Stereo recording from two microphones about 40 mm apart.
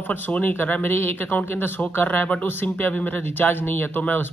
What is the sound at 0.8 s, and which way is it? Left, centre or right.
Speech, left.